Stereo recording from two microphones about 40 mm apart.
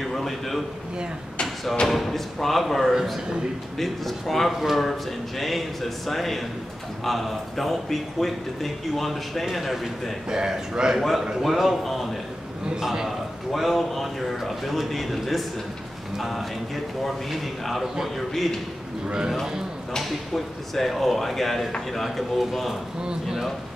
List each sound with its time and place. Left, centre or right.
0.0 s a man's voice: centre
1.9 s speech: centre
10.3 s speech: centre
11.0 s speech: centre
13.5 s speech: centre
20.0 s speech: centre